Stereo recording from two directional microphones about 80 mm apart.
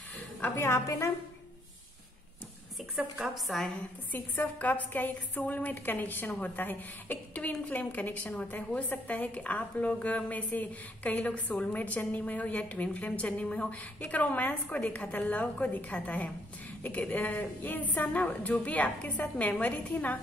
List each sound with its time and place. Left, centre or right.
0.4 s a woman's voice: left
3.0 s a woman's voice: centre
4.1 s a woman's voice: left